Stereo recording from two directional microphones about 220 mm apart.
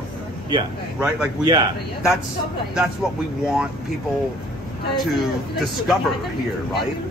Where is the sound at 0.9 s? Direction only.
5° right (ahead or behind).